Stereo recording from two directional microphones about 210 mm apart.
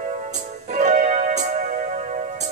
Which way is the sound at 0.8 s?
35° right (ahead or behind).